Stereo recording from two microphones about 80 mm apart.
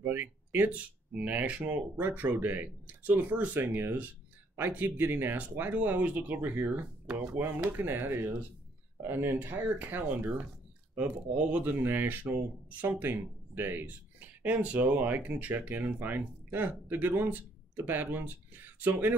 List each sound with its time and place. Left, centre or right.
0.0 s speech: right